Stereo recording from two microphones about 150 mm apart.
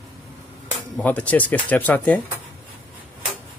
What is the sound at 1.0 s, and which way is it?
Speech, 10° left (ahead or behind).